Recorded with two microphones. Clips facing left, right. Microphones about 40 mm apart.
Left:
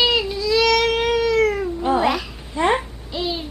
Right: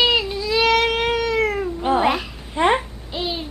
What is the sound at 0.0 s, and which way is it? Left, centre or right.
Baby cry, centre.